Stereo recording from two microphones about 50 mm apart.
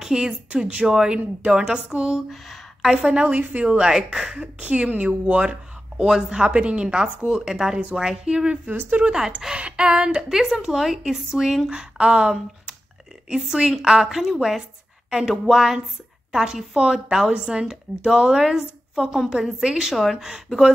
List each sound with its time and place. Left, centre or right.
0.0 s a woman's voice: centre
2.1 s a woman's voice: centre
4.4 s speech: right
5.9 s a woman's voice: centre
6.4 s a woman's voice: right
8.6 s speech: right
9.0 s a woman's voice: centre
19.9 s speech: centre